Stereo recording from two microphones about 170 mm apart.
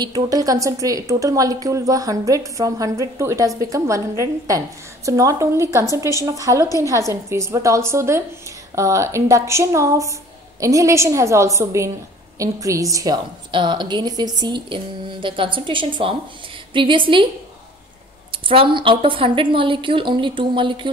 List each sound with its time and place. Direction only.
0.0 s a woman's voice: 20° right (ahead or behind)
18.3 s a woman's voice: 30° right (ahead or behind)